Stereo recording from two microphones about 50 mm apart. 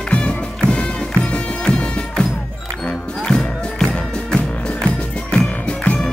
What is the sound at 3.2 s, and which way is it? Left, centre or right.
Music, centre.